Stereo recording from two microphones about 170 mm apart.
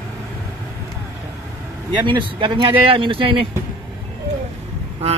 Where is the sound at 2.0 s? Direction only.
30° right (ahead or behind).